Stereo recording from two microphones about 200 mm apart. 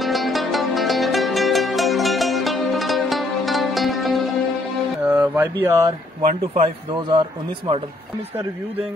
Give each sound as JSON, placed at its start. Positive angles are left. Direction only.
{"t": 0.0, "sound": "music", "side_deg": 0}
{"t": 5.0, "sound": "a sound", "side_deg": -10}
{"t": 6.2, "sound": "speech", "side_deg": -35}
{"t": 7.0, "sound": "a man's voice", "side_deg": -25}